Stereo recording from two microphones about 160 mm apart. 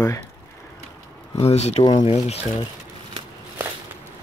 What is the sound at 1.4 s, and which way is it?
Speech, 40° left (ahead or behind).